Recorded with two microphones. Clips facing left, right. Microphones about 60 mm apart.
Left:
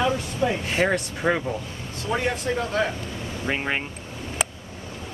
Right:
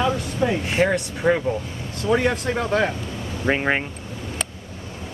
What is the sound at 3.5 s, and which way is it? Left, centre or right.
Speech, right.